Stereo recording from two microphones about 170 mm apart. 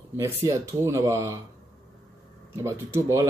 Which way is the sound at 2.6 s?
15° right (ahead or behind).